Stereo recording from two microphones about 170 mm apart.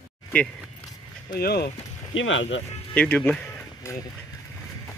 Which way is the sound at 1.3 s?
65° left (ahead or behind).